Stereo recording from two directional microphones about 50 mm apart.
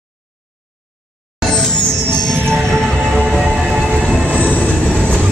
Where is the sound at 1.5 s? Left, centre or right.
Centre.